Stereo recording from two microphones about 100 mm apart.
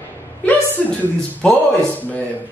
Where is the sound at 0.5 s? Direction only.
15° left (ahead or behind).